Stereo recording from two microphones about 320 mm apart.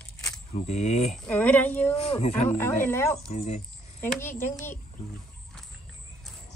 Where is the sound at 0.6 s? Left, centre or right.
Left.